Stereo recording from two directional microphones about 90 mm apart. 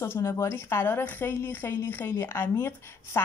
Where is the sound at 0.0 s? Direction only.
30° left (ahead or behind).